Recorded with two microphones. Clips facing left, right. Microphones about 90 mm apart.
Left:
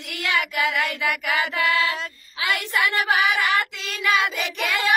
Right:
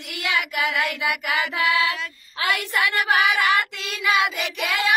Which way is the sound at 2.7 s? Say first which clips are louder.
Left 1 dB; centre (ahead or behind).